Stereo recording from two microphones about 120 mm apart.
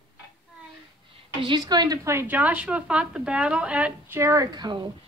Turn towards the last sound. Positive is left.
turn(degrees=-35)  # may be behind; listen again after turning